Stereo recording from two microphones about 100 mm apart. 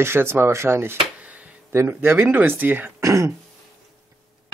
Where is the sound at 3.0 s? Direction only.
30° right (ahead or behind).